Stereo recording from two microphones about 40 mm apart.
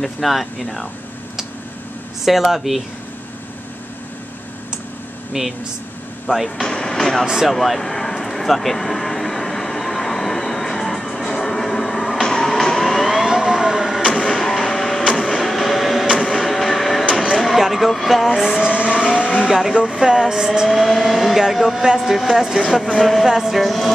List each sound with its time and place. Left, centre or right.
0.0 s speech: centre
2.2 s speech: centre
5.4 s a woman's voice: centre
6.2 s speech: centre
6.7 s vehicle: centre
13.2 s vehicle: centre
14.4 s a sound: centre
17.1 s a sound: centre
17.5 s speech: centre
18.8 s vehicle: right
19.1 s speech: centre
20.6 s a woman's voice: centre